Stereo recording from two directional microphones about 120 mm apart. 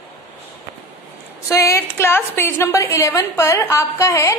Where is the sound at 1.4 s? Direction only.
25° left (ahead or behind).